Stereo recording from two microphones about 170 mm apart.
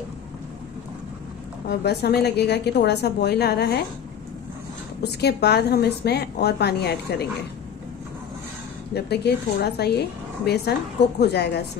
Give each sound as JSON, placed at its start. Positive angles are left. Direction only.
{"t": 1.7, "sound": "a woman's voice", "side_deg": 70}
{"t": 5.0, "sound": "a woman's voice", "side_deg": 75}
{"t": 8.9, "sound": "a woman's voice", "side_deg": 70}